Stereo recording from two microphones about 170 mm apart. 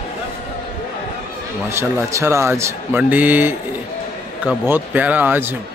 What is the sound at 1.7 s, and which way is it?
Speech, 15° right (ahead or behind).